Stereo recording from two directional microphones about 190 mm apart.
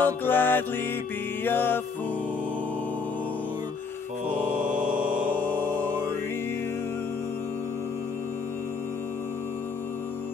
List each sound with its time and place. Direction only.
0.0 s music: 10° left (ahead or behind)
4.6 s mantra: 45° right (ahead or behind)
5.3 s music: 10° left (ahead or behind)